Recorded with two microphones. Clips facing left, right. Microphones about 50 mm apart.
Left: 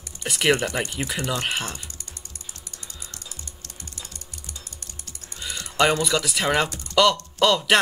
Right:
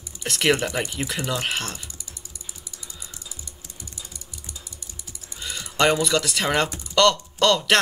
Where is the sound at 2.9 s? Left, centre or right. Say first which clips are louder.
Left 1 dB; centre.